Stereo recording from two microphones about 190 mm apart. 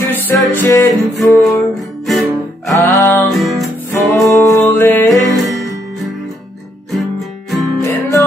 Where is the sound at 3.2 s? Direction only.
Centre (ahead or behind).